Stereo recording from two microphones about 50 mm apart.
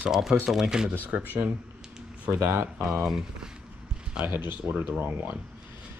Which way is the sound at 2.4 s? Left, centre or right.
Right.